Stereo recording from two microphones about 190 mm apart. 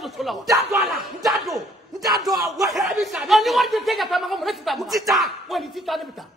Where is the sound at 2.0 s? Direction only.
20° right (ahead or behind).